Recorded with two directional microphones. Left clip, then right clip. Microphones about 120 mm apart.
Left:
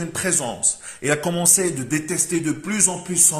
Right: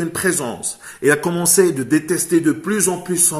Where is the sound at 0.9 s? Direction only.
15° left (ahead or behind).